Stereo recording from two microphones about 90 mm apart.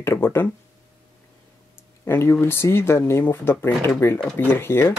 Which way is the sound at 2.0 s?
30° left (ahead or behind).